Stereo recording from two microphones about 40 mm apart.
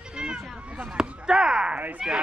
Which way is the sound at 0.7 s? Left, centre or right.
Right.